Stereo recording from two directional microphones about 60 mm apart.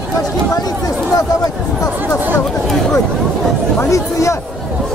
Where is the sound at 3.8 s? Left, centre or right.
Left.